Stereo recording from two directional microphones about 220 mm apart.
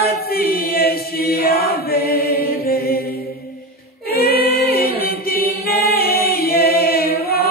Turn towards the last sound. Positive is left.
turn(degrees=45)  # may be behind; listen again after turning